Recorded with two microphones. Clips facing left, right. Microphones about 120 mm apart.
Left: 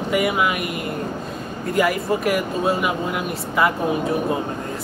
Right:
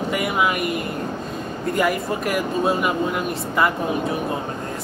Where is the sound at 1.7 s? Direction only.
Centre (ahead or behind).